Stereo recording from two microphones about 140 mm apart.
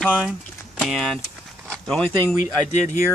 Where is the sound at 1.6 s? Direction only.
5° left (ahead or behind).